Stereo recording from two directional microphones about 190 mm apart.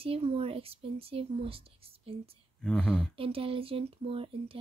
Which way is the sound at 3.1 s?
30° right (ahead or behind).